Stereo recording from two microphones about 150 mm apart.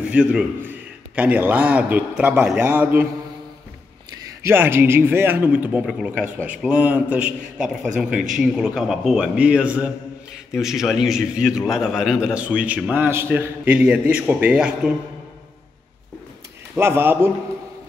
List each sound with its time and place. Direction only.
0.0 s a man's voice: 10° right (ahead or behind)
4.4 s a man's voice: 15° right (ahead or behind)
16.7 s a man's voice: 15° right (ahead or behind)